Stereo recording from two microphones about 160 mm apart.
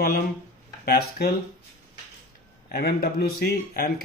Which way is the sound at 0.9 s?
80° left.